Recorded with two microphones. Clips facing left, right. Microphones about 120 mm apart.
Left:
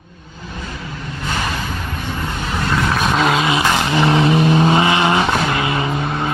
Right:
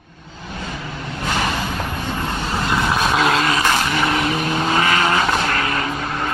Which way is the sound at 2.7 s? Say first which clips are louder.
Left 1 dB; 10° right (ahead or behind).